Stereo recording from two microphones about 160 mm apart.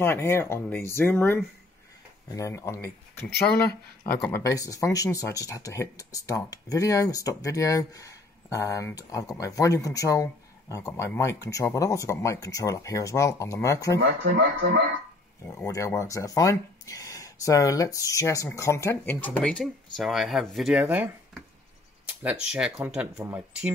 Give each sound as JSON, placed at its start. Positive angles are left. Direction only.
{"t": 0.0, "sound": "speech", "side_deg": 15}
{"t": 14.0, "sound": "speech", "side_deg": -70}
{"t": 15.5, "sound": "speech", "side_deg": 20}